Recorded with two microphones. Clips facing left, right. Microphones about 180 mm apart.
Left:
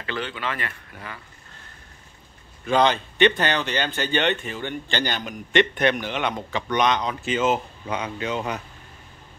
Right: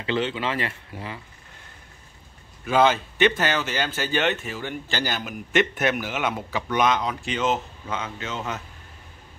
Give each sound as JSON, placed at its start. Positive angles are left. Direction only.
{"t": 0.0, "sound": "speech", "side_deg": -25}
{"t": 2.6, "sound": "speech", "side_deg": -5}